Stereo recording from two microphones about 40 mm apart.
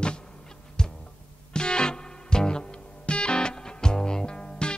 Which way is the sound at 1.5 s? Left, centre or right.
Left.